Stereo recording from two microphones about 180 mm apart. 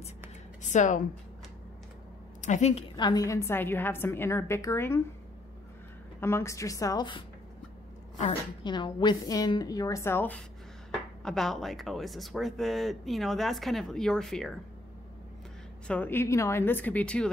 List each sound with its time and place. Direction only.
0.7 s a woman's voice: 45° left (ahead or behind)
2.4 s a woman's voice: 40° left (ahead or behind)
3.0 s a woman's voice: 20° left (ahead or behind)
6.2 s a woman's voice: 15° left (ahead or behind)
15.9 s a woman's voice: 10° left (ahead or behind)